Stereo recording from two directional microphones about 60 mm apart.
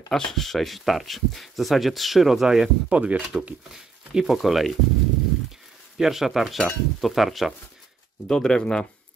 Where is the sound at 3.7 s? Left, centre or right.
Centre.